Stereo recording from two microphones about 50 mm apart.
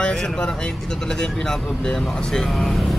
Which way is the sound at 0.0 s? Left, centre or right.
Centre.